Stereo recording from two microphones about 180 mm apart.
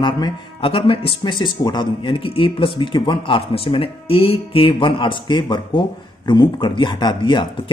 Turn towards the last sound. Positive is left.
turn(degrees=25)  # may be behind; listen again after turning